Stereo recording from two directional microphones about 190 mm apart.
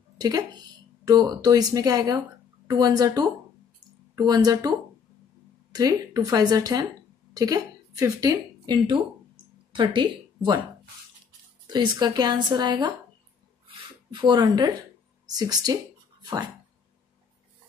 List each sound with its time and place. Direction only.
0.2 s a woman's voice: 20° right (ahead or behind)
11.6 s a woman's voice: 25° right (ahead or behind)
13.7 s a sound: 25° right (ahead or behind)
15.2 s speech: 20° right (ahead or behind)